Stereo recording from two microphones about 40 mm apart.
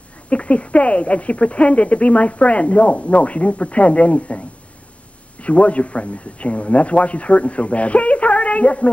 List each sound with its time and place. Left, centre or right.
0.3 s speech: left